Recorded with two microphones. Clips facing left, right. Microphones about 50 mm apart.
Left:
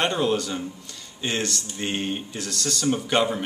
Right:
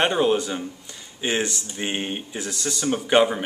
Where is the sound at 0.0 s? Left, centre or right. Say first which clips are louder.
Right 3 dB; centre.